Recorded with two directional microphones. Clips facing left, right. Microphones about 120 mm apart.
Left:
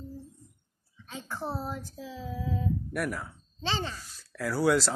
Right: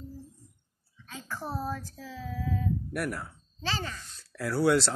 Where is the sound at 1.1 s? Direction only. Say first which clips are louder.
Left 1 dB; 20° left (ahead or behind).